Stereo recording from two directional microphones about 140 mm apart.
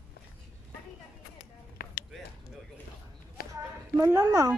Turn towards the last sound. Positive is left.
turn(degrees=-20)  # may be behind; listen again after turning